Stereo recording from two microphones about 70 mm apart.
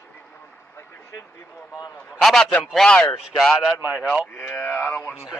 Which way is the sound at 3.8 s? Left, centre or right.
Centre.